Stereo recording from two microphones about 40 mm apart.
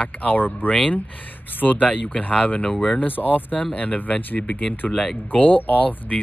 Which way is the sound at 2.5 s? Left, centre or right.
Left.